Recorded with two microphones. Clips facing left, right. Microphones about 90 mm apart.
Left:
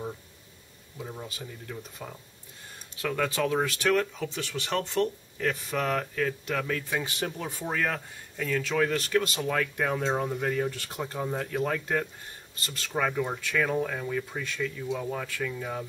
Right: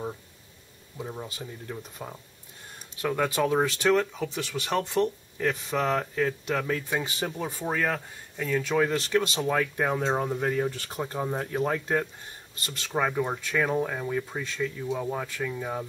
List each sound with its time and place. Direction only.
0.9 s speech: 15° right (ahead or behind)